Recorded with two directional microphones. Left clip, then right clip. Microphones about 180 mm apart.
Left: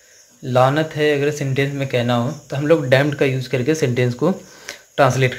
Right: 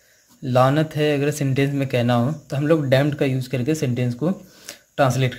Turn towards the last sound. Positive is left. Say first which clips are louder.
# left 4 dB
turn(degrees=-20)  # may be behind; listen again after turning